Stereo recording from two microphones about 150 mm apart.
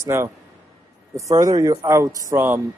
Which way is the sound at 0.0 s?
20° right (ahead or behind).